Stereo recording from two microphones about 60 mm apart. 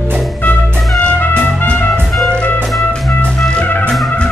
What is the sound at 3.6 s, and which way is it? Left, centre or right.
Music, left.